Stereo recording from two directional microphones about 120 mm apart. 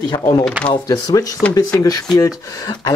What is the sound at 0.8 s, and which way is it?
Speech, 30° left (ahead or behind).